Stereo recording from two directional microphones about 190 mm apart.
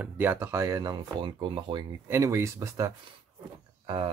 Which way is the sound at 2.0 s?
15° right (ahead or behind).